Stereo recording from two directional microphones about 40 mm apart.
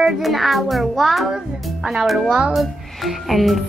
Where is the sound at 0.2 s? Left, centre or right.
Centre.